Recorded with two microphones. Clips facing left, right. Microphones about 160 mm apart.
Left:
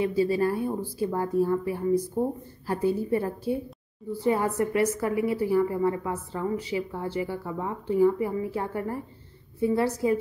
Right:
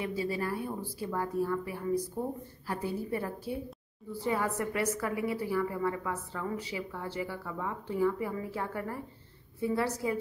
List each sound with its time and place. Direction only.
0.0 s a woman's voice: 30° left (ahead or behind)
4.3 s a woman's voice: 25° left (ahead or behind)